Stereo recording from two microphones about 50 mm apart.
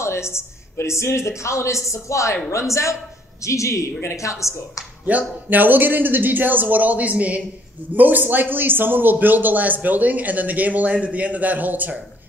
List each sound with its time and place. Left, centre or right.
0.0 s a woman's voice: left
5.1 s a man's voice: right